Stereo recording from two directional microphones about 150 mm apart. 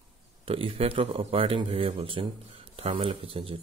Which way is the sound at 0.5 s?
35° right (ahead or behind).